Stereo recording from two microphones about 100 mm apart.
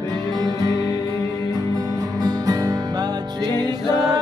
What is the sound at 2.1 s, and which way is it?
Music, 35° right (ahead or behind).